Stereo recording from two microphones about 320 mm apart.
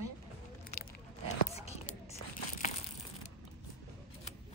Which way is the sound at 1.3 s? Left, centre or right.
Centre.